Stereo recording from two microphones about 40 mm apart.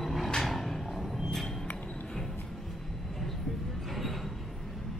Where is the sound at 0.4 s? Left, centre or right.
Centre.